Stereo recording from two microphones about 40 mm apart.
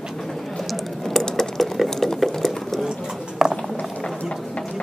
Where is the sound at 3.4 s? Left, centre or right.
Centre.